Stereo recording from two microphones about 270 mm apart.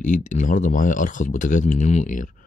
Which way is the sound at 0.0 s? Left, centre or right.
Left.